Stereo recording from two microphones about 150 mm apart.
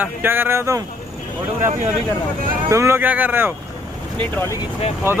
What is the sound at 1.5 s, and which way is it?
Speech, 60° right (ahead or behind).